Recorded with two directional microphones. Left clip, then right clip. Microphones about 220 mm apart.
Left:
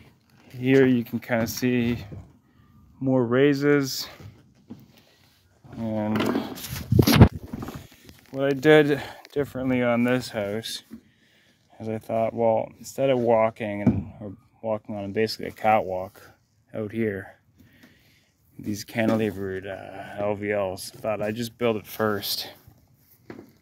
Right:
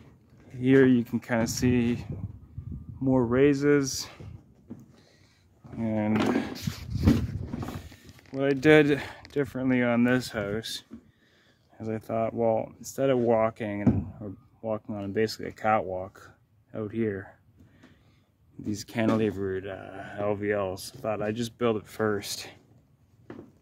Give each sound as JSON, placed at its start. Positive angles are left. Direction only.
{"t": 0.6, "sound": "speech", "side_deg": 0}
{"t": 5.8, "sound": "speech", "side_deg": -5}
{"t": 8.3, "sound": "speech", "side_deg": 0}
{"t": 10.9, "sound": "a sound", "side_deg": 50}
{"t": 11.8, "sound": "speech", "side_deg": 5}
{"t": 18.7, "sound": "speech", "side_deg": 10}